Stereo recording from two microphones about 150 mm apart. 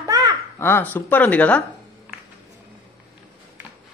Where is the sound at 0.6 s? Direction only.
15° left (ahead or behind).